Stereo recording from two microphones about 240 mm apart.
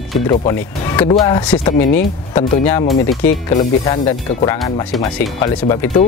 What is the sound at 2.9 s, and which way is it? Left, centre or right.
Speech, centre.